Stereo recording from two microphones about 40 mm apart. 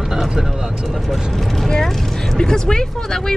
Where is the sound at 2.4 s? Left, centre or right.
Centre.